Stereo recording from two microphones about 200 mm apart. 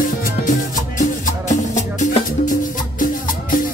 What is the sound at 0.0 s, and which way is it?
Music, 40° left (ahead or behind).